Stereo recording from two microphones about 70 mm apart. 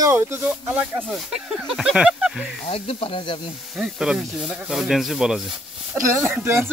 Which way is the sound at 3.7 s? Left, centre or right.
Centre.